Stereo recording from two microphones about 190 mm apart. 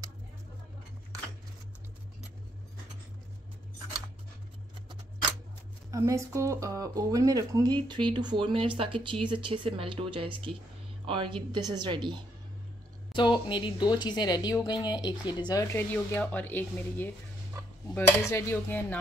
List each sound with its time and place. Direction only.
5.9 s speech: 15° right (ahead or behind)
13.1 s speech: 25° left (ahead or behind)
18.3 s speech: 10° left (ahead or behind)